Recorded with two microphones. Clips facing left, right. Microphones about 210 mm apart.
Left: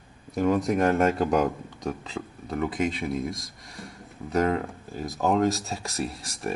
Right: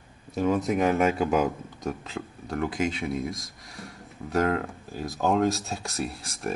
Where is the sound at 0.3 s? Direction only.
Centre (ahead or behind).